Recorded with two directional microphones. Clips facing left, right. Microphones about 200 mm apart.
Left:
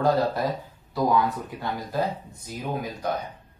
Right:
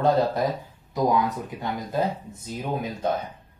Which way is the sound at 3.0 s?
25° right (ahead or behind).